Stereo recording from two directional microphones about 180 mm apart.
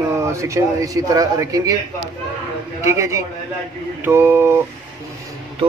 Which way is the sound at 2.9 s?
15° right (ahead or behind).